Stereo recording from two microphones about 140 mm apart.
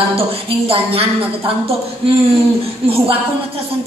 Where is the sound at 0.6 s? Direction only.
45° right (ahead or behind).